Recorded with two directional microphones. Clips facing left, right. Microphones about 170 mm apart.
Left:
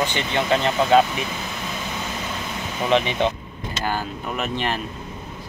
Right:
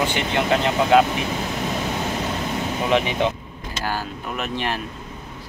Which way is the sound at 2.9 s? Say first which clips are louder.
Left 1 dB; 10° right (ahead or behind).